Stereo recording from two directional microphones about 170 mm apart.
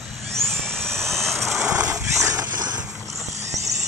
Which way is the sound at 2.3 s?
20° right (ahead or behind).